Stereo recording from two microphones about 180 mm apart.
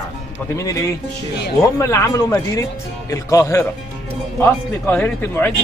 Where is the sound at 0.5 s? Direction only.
20° left (ahead or behind).